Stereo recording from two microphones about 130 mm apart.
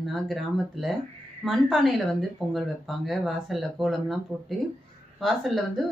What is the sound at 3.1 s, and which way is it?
Speech, centre (ahead or behind).